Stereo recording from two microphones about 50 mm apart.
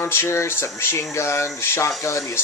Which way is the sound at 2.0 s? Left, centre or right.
Left.